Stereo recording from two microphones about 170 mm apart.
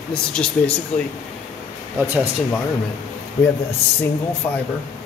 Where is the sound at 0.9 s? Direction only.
45° left (ahead or behind).